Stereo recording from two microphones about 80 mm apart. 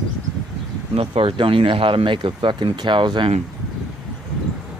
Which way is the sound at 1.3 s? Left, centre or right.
Right.